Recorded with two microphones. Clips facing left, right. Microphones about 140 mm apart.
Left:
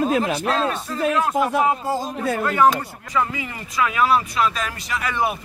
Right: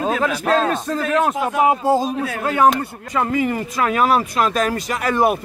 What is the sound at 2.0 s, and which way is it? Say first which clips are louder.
Speech: right 2 dB; 20° right (ahead or behind).